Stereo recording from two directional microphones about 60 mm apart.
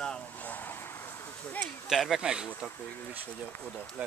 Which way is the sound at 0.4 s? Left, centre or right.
Left.